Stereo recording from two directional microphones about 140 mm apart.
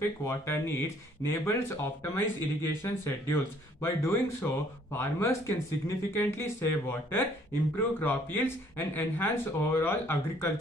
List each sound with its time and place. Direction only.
0.0 s speech: 15° left (ahead or behind)